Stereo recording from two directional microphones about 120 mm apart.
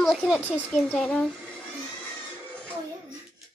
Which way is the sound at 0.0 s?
Centre (ahead or behind).